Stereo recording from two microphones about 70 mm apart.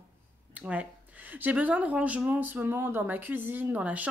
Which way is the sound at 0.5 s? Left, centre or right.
Centre.